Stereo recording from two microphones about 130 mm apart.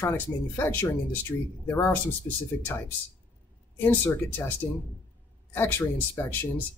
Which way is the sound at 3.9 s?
15° left (ahead or behind).